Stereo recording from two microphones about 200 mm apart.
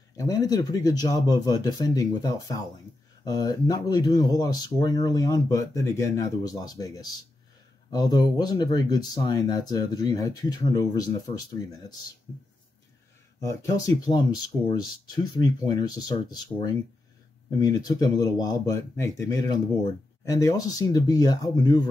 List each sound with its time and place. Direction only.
0.2 s speech: 15° left (ahead or behind)
13.4 s speech: 20° left (ahead or behind)
15.3 s speech: 20° left (ahead or behind)